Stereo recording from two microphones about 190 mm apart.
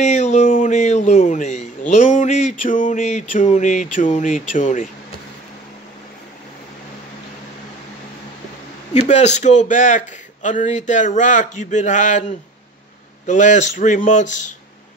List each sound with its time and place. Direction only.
0.0 s speech: 40° left (ahead or behind)
9.0 s speech: 35° left (ahead or behind)